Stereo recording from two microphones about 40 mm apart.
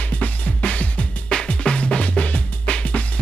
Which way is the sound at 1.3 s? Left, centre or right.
Left.